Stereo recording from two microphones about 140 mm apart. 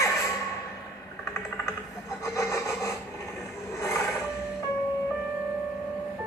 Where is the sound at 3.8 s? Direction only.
20° left (ahead or behind).